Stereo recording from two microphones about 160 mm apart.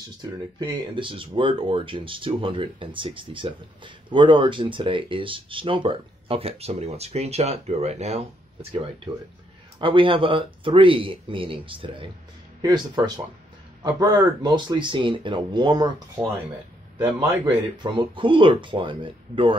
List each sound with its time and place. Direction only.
0.2 s speech: 30° right (ahead or behind)
9.8 s speech: 30° right (ahead or behind)
17.0 s a man's voice: 10° right (ahead or behind)
17.8 s speech: 30° right (ahead or behind)